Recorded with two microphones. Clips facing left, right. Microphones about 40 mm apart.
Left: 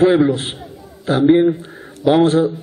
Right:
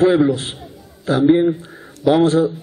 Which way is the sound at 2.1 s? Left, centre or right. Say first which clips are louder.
Left 1 dB; left.